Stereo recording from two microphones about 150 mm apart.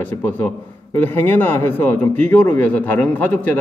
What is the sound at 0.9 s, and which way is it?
Speech, 15° left (ahead or behind).